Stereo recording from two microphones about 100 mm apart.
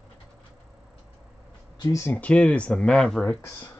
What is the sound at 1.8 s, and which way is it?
Speech, 35° left (ahead or behind).